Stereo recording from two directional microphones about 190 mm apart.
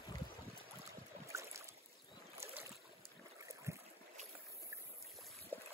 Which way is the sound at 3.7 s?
15° right (ahead or behind).